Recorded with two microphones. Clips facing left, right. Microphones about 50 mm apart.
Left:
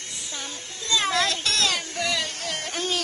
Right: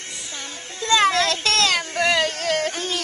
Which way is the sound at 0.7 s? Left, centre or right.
Right.